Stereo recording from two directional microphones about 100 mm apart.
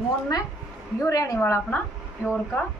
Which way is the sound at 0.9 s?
35° left (ahead or behind).